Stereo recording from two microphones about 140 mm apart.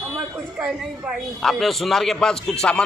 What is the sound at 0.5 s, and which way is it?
Speech, 10° right (ahead or behind).